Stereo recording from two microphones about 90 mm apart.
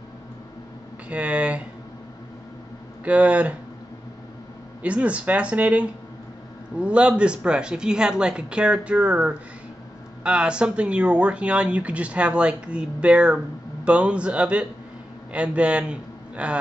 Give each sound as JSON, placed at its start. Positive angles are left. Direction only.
{"t": 1.0, "sound": "speech", "side_deg": -15}
{"t": 3.1, "sound": "speech", "side_deg": -15}
{"t": 4.8, "sound": "speech", "side_deg": -15}
{"t": 10.2, "sound": "a man's voice", "side_deg": -10}